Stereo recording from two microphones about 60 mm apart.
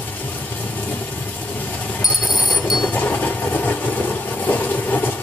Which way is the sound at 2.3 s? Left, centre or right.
Centre.